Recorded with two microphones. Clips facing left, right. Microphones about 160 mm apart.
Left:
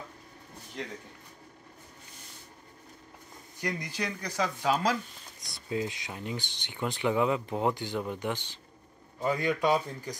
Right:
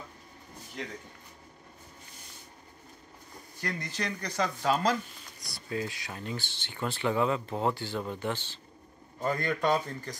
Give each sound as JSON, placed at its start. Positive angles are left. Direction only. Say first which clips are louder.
{"t": 3.5, "sound": "speech", "louder": "left 1 dB", "side_deg": 15}
{"t": 5.4, "sound": "speech", "louder": "left 2 dB", "side_deg": 20}